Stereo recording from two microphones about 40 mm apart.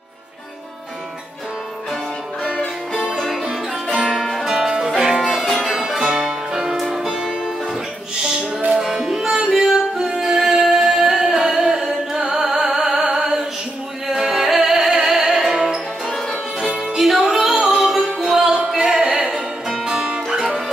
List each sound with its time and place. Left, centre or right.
2.4 s music: left
3.4 s music: centre
4.1 s music: centre
4.5 s music: centre
5.2 s music: centre
16.9 s music: centre
19.9 s music: right